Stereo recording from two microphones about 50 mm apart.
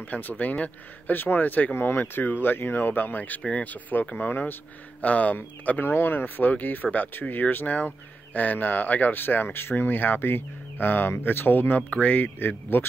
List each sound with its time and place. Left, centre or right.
0.0 s speech: left
4.3 s speech: left
5.0 s speech: left
11.9 s speech: left